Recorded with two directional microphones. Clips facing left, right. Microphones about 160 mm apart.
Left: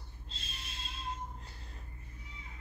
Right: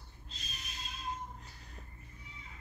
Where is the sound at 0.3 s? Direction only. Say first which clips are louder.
Even; 30° left (ahead or behind).